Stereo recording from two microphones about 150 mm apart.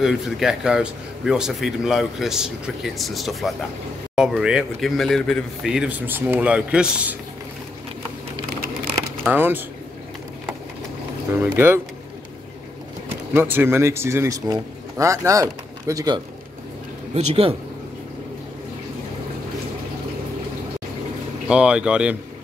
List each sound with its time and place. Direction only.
0.0 s a man's voice: 5° right (ahead or behind)
9.3 s speech: 15° right (ahead or behind)
11.4 s speech: 15° right (ahead or behind)
13.3 s speech: 15° right (ahead or behind)
17.1 s speech: 45° right (ahead or behind)
21.5 s speech: 5° right (ahead or behind)